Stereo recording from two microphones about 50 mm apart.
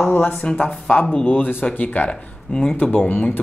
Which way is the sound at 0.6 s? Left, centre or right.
Left.